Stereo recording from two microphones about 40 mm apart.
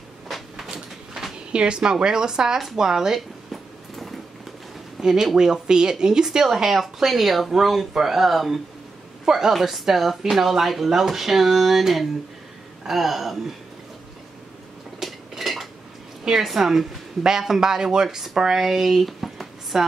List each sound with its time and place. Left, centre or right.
0.3 s cupboard open or close: centre
0.7 s a sound: centre
1.5 s speech: right
3.9 s vehicle: centre
5.0 s a woman's voice: centre
15.0 s a sound: centre
16.3 s speech: centre